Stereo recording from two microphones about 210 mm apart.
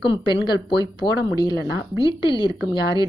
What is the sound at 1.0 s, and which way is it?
Speech, 20° left (ahead or behind).